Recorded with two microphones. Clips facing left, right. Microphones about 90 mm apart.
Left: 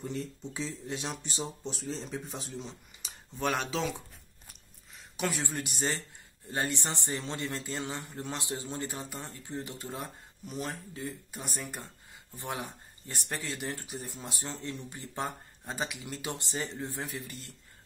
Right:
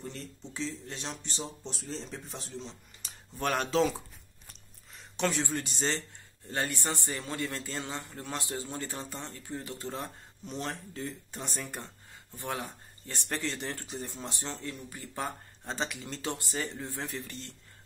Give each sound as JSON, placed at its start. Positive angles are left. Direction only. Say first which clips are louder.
{"t": 0.0, "sound": "speech", "louder": "left 5 dB", "side_deg": 5}
{"t": 4.9, "sound": "a sound", "louder": "right 3 dB", "side_deg": 5}
{"t": 5.4, "sound": "speech", "louder": "right 2 dB", "side_deg": 15}
{"t": 9.9, "sound": "speech", "louder": "right 1 dB", "side_deg": 5}
{"t": 15.6, "sound": "speech", "louder": "right 1 dB", "side_deg": 10}